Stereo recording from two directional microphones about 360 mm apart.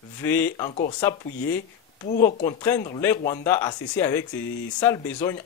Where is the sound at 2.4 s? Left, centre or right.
Centre.